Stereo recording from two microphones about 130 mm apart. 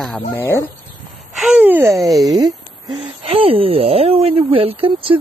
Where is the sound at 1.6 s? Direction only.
15° right (ahead or behind).